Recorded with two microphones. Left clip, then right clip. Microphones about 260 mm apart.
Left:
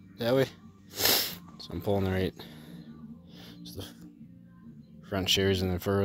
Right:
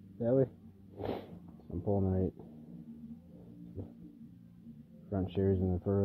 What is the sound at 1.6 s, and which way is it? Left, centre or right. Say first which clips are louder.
Speech: left 5 dB; left.